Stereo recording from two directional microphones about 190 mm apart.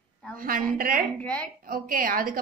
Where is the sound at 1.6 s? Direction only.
50° right (ahead or behind).